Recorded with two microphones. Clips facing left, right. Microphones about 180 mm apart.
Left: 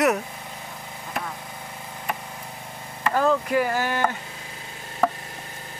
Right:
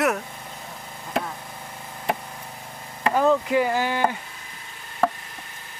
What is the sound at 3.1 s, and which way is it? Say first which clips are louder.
Speech: right 1 dB; 15° right (ahead or behind).